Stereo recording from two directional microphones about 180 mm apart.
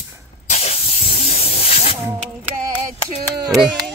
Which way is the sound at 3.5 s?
Centre (ahead or behind).